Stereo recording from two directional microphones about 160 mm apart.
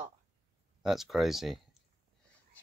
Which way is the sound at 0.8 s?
Centre (ahead or behind).